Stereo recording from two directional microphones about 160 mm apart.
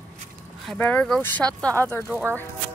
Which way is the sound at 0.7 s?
10° left (ahead or behind).